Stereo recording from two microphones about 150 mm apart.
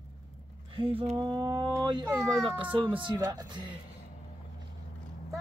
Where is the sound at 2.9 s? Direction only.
30° right (ahead or behind).